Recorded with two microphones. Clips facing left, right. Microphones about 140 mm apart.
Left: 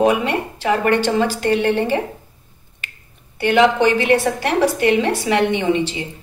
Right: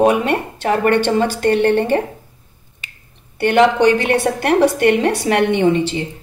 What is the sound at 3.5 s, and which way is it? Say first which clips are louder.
A woman's voice: right 2 dB; 55° right (ahead or behind).